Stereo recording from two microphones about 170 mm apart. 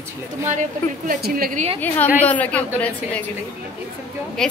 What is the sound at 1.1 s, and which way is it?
Speech, 55° right (ahead or behind).